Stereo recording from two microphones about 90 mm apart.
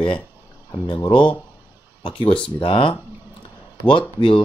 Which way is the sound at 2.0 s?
75° left (ahead or behind).